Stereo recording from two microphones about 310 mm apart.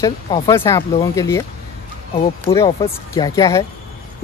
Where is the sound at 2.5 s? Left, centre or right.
Centre.